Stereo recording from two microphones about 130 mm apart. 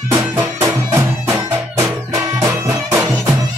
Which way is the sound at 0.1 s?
20° right (ahead or behind).